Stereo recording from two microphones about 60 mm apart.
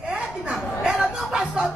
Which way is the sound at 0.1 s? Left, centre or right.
Centre.